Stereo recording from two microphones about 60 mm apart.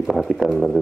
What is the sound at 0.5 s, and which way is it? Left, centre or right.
Speech, centre.